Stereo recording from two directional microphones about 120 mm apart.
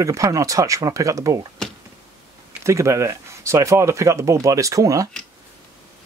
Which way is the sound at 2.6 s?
25° right (ahead or behind).